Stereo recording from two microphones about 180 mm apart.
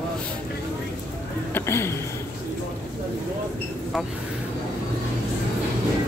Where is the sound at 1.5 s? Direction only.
15° left (ahead or behind).